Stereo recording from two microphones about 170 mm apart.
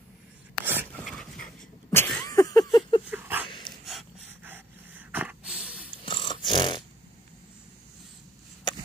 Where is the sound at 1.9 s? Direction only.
15° left (ahead or behind).